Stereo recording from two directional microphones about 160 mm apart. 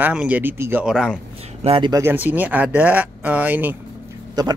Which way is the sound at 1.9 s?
15° right (ahead or behind).